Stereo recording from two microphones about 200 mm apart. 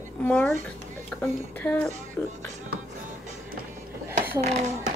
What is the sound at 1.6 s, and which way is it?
Speech, 5° left (ahead or behind).